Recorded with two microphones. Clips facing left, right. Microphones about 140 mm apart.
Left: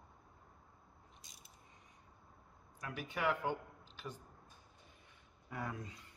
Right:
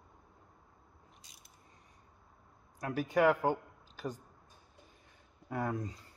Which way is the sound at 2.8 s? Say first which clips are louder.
Right 10 dB; 40° right (ahead or behind).